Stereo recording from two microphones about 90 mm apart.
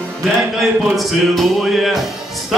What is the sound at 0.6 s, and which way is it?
Speech, centre (ahead or behind).